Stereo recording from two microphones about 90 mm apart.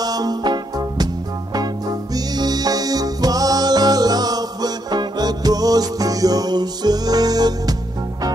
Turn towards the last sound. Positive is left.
turn(degrees=-45)  # may be behind; listen again after turning